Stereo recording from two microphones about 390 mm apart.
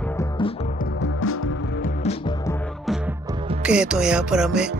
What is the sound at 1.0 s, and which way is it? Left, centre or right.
Music, left.